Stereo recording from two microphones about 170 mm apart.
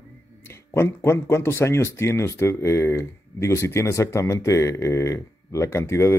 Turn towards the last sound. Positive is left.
turn(degrees=15)  # may be behind; listen again after turning